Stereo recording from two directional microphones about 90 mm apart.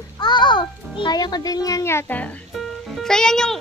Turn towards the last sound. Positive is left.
turn(degrees=5)  # may be behind; listen again after turning